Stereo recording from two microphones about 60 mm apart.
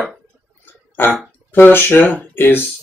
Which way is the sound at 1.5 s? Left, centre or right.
Left.